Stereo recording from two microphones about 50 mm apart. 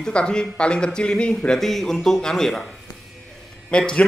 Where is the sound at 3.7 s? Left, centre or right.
Centre.